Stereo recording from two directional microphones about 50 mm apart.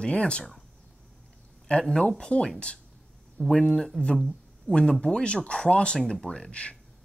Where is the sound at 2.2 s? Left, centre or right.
Centre.